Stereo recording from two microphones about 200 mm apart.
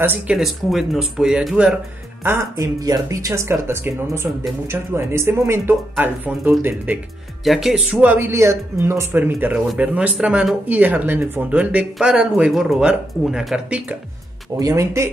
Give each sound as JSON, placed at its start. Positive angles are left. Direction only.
{"t": 0.0, "sound": "speech", "side_deg": -5}
{"t": 2.2, "sound": "speech", "side_deg": -15}